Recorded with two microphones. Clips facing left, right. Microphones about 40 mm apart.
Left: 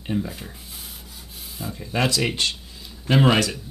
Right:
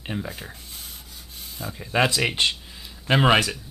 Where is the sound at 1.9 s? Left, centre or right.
Centre.